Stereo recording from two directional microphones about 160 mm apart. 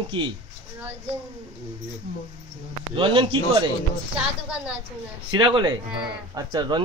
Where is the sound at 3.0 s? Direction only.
30° right (ahead or behind).